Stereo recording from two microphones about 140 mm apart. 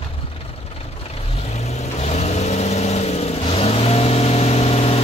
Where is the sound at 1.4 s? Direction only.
50° left (ahead or behind).